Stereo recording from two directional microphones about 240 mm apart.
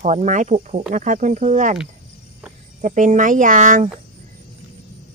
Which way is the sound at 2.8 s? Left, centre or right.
Right.